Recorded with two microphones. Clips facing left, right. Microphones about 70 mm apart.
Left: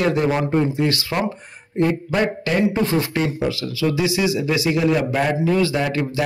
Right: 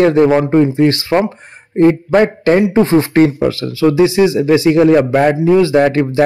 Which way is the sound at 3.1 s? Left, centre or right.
Right.